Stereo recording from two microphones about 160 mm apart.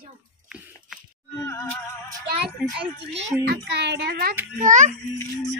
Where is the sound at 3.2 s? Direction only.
90° right.